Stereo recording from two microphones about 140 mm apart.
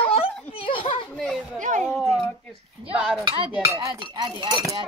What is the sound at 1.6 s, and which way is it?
Speech, 60° right (ahead or behind).